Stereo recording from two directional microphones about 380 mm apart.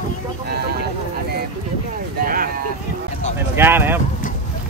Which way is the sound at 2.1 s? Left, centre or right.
Right.